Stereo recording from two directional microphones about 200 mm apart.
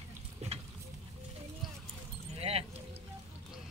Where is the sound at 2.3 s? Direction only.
30° right (ahead or behind).